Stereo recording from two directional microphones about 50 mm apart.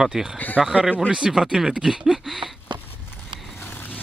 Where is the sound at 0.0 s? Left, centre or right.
Centre.